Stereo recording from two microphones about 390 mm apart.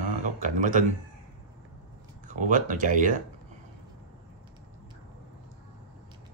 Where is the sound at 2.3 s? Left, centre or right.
Centre.